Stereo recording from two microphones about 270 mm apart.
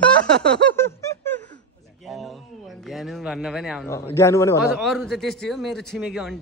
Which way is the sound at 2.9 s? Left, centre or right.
Centre.